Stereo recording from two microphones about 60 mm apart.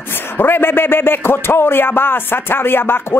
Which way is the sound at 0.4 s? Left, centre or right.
Left.